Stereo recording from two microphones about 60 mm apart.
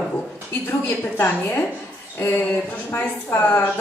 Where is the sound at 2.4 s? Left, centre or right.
Left.